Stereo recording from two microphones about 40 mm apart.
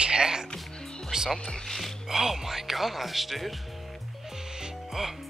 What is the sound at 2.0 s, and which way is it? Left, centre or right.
Speech, centre.